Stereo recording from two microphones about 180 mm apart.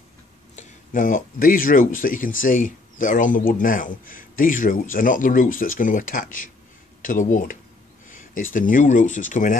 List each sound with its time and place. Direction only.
0.6 s speech: 45° left (ahead or behind)
8.1 s a sound: 45° left (ahead or behind)
8.5 s speech: 45° left (ahead or behind)